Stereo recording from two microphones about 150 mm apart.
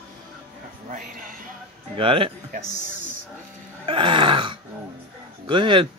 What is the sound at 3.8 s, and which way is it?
Groan, 35° right (ahead or behind).